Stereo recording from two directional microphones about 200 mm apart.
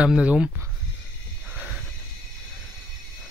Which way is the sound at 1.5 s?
5° right (ahead or behind).